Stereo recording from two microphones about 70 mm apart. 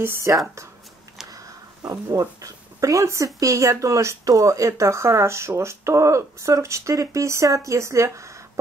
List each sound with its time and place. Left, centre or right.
0.0 s speech: right
1.3 s a sound: right
3.3 s speech: right